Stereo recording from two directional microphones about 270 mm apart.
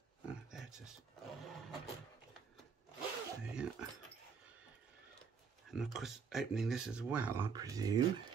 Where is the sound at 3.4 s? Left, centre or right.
Centre.